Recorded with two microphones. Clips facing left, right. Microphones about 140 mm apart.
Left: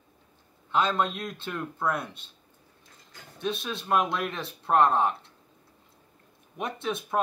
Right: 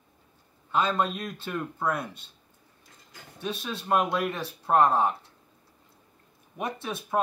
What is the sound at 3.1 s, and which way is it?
Speech, 5° right (ahead or behind).